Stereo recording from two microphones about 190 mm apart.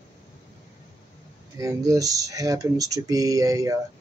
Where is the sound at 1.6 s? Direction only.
20° right (ahead or behind).